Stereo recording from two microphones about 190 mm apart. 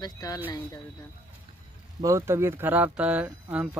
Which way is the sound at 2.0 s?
15° right (ahead or behind).